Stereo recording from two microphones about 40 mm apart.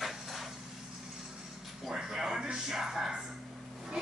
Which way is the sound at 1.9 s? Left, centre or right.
Centre.